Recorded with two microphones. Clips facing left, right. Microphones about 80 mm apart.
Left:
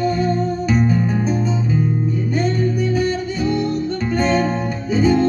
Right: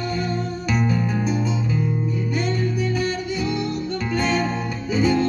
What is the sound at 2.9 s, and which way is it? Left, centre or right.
Music, left.